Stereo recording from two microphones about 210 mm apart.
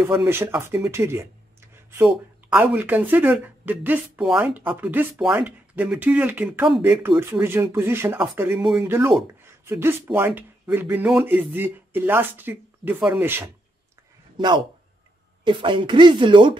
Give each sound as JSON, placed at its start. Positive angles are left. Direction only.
{"t": 0.0, "sound": "speech", "side_deg": -10}
{"t": 1.7, "sound": "a sound", "side_deg": -10}
{"t": 2.5, "sound": "a man's voice", "side_deg": -10}